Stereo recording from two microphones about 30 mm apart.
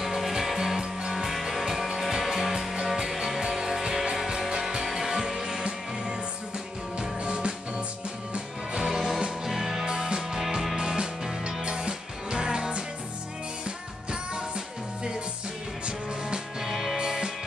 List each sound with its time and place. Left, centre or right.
0.0 s music: centre
3.0 s music: right
4.8 s music: centre; by 7.8 s right
8.8 s music: centre
9.8 s music: right
16.6 s music: centre
16.9 s music: right